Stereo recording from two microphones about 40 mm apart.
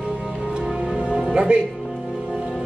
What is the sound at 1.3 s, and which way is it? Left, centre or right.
Speech, right.